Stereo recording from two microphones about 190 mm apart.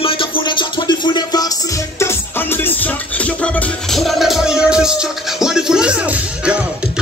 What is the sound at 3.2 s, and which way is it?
Music, 5° left (ahead or behind).